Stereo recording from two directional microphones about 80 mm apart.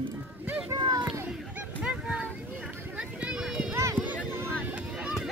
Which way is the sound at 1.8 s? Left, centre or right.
Centre.